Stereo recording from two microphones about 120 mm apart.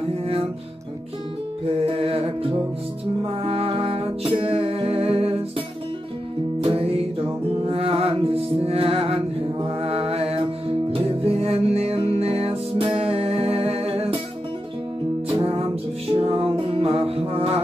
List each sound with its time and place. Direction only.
1.9 s music: 55° right (ahead or behind)
6.6 s music: 50° right (ahead or behind)
9.8 s mantra: 55° right (ahead or behind)
10.9 s music: 55° right (ahead or behind)
15.2 s music: 45° right (ahead or behind)